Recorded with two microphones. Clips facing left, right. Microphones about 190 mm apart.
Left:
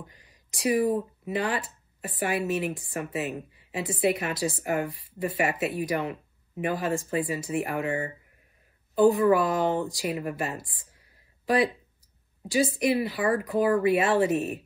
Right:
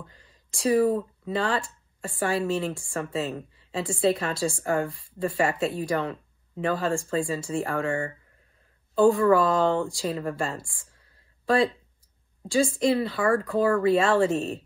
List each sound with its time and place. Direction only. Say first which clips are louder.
0.0 s speech: even; 15° left (ahead or behind)